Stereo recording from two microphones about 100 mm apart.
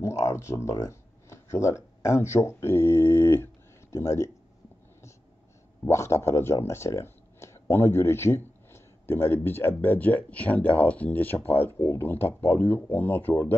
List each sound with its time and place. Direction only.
0.0 s speech: 30° left (ahead or behind)
5.9 s speech: 30° left (ahead or behind)